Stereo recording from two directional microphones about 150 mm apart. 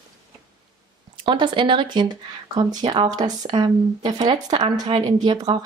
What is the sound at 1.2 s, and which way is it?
A woman's voice, 30° right (ahead or behind).